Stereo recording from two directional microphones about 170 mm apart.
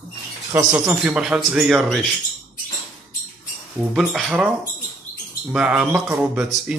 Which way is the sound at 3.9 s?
Centre (ahead or behind).